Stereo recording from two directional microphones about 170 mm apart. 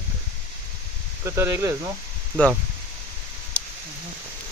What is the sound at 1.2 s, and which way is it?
Speech, 15° right (ahead or behind).